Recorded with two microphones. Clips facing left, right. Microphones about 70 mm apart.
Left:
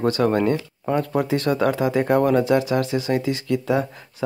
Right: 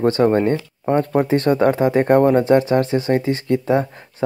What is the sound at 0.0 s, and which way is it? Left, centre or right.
Speech, right.